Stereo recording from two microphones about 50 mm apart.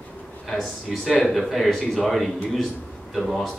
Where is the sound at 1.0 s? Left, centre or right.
Centre.